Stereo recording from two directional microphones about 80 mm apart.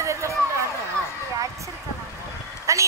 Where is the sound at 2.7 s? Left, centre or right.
Right.